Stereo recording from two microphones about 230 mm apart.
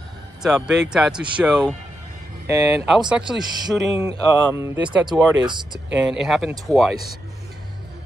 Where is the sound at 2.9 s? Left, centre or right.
Centre.